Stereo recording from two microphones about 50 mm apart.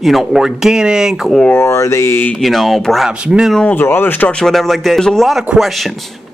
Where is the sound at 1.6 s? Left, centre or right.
Left.